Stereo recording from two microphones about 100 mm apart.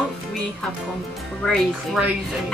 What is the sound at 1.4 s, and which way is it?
Speech, 5° left (ahead or behind).